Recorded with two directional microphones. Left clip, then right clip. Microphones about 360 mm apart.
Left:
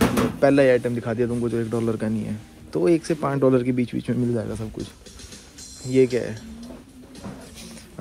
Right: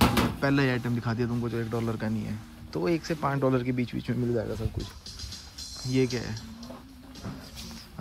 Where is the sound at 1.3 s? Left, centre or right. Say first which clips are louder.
Left 7 dB; left.